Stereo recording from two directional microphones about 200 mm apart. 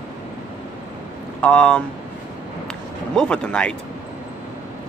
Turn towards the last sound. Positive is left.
turn(degrees=5)  # may be behind; listen again after turning